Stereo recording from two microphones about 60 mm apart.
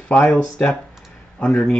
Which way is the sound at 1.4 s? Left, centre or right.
Centre.